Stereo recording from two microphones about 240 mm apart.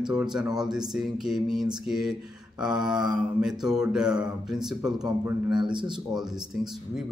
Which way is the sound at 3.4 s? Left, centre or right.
Centre.